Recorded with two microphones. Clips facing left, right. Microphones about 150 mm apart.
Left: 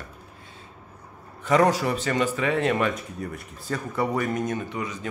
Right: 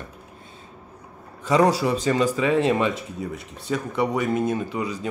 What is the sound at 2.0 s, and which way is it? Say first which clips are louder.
Speech: right 4 dB; 20° right (ahead or behind).